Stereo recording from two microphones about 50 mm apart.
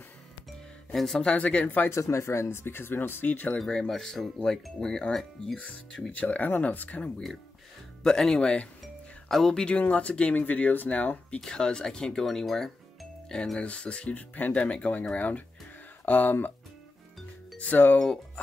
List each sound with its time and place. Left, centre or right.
0.5 s music: centre
1.2 s speech: left
1.9 s speech: left
3.6 s speech: centre; by 7.1 s left
8.0 s speech: centre
9.8 s speech: left
11.4 s speech: centre
13.6 s speech: left
17.9 s speech: centre